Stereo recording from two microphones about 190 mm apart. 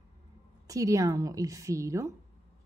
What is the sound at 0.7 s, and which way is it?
A woman's voice, 15° right (ahead or behind).